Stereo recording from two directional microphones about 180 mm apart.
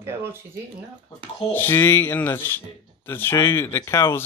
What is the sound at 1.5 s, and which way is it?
Speech, 10° left (ahead or behind).